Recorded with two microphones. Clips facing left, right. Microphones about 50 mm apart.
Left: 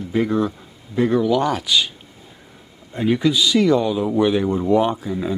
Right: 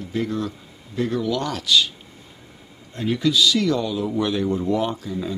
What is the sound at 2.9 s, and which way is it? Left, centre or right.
A man's voice, centre.